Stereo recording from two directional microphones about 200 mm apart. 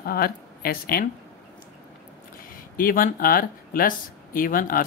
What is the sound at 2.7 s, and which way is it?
Speech, 45° left (ahead or behind).